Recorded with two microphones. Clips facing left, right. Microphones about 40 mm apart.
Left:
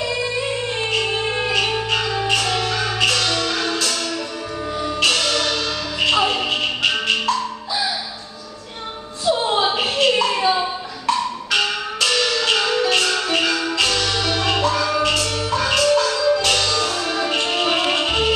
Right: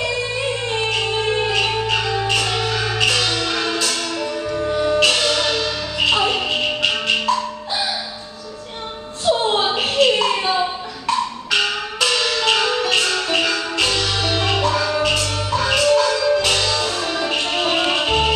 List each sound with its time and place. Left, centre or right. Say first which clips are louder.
1.8 s music: right 1 dB; centre
4.7 s music: right 7 dB; right
5.0 s music: right 2 dB; centre
5.9 s music: even; centre
9.2 s music: right 1 dB; right
9.9 s a sound: right 3 dB; centre
10.6 s music: right 2 dB; centre
14.6 s music: even; centre